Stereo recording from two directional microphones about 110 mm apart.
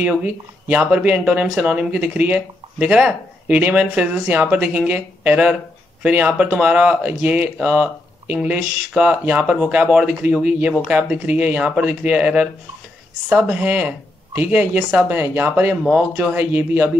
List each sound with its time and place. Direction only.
0.0 s speech: 10° right (ahead or behind)